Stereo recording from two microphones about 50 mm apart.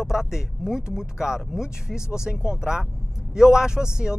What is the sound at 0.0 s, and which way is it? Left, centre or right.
Speech, centre.